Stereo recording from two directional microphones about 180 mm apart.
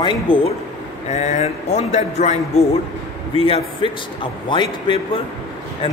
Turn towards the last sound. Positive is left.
turn(degrees=30)  # may be behind; listen again after turning